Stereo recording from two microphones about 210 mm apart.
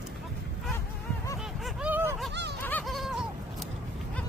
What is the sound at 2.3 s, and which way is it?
Snicker, 55° right (ahead or behind).